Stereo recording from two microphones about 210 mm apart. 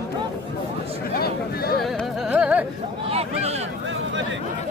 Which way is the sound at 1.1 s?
45° left (ahead or behind).